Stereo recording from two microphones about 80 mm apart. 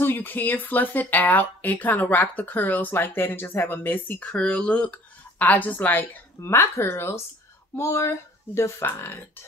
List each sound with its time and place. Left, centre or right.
0.0 s speech: left
4.3 s speech: centre
6.4 s speech: left